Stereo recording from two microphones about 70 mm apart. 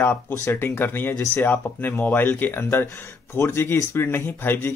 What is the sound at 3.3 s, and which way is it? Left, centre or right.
Speech, left.